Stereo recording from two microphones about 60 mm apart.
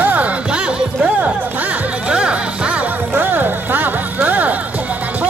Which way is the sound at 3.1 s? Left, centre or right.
Right.